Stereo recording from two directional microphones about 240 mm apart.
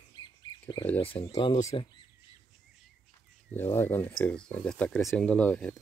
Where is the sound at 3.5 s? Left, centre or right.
Centre.